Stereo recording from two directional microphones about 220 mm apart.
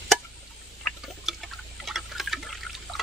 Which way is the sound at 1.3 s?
Centre (ahead or behind).